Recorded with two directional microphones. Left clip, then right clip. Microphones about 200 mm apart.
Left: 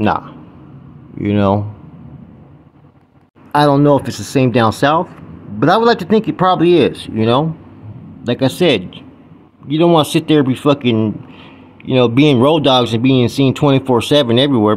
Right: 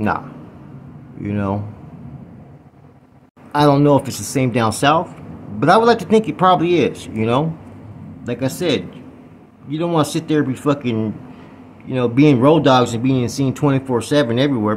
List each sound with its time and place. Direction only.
1.2 s speech: 30° left (ahead or behind)
3.5 s a man's voice: 20° left (ahead or behind)